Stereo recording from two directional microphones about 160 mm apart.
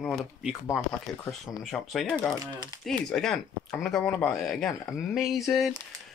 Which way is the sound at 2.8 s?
5° left (ahead or behind).